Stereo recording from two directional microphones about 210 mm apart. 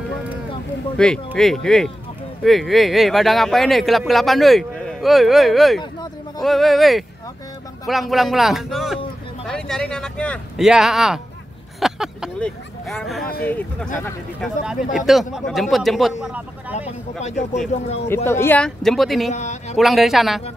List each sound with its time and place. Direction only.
0.9 s speech: 5° left (ahead or behind)
14.4 s speech: 5° right (ahead or behind)
17.2 s a man's voice: 30° left (ahead or behind)
18.0 s speech: 10° left (ahead or behind)
19.3 s a man's voice: 35° left (ahead or behind)
19.8 s speech: centre (ahead or behind)